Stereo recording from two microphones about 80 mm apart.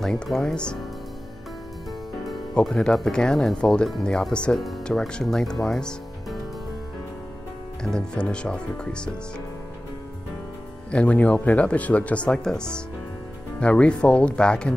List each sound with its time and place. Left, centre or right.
0.0 s speech: centre
2.5 s speech: centre
4.6 s speech: centre
4.8 s speech: centre
7.8 s speech: centre
10.9 s speech: centre